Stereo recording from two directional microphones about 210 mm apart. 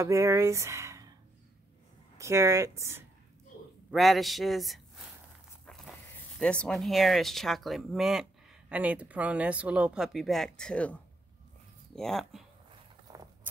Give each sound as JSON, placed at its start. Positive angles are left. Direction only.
{"t": 0.0, "sound": "speech", "side_deg": -15}
{"t": 2.1, "sound": "speech", "side_deg": -15}
{"t": 3.9, "sound": "speech", "side_deg": 0}
{"t": 6.4, "sound": "speech", "side_deg": 5}
{"t": 13.1, "sound": "a sound", "side_deg": -20}